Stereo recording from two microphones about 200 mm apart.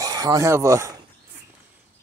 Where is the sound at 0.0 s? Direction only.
20° right (ahead or behind).